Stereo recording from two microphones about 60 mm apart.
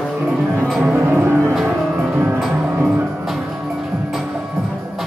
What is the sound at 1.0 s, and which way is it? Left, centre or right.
Music, right.